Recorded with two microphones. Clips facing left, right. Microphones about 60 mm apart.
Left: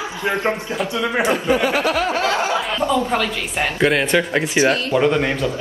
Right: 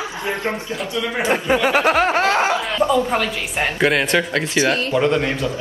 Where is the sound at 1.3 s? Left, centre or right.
Right.